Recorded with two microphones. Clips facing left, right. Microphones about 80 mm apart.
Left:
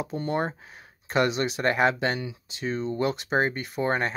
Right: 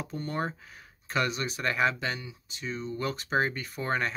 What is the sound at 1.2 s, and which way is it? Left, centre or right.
Speech, left.